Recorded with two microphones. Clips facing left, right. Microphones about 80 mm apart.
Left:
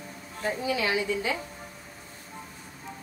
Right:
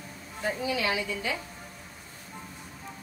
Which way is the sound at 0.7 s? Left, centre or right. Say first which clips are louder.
Left 2 dB; left.